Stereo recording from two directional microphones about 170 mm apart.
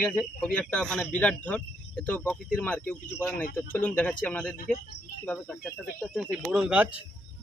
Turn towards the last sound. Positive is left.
turn(degrees=-5)  # may be behind; listen again after turning